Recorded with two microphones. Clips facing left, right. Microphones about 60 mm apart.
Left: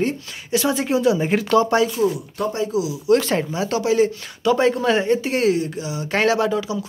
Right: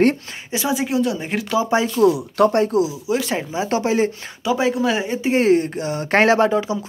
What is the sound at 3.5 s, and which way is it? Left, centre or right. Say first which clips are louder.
Speech: right 1 dB; right.